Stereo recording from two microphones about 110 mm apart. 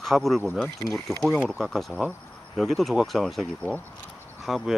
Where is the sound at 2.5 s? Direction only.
Centre (ahead or behind).